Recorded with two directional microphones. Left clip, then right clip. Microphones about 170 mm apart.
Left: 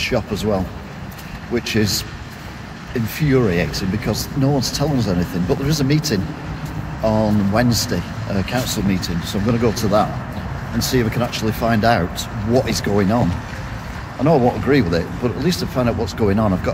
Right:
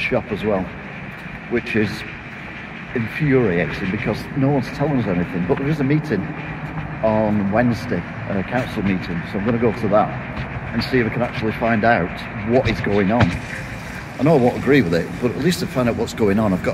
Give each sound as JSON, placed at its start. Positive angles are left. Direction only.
{"t": 0.0, "sound": "speech", "side_deg": -20}
{"t": 3.2, "sound": "speech", "side_deg": -20}
{"t": 14.2, "sound": "speech", "side_deg": 0}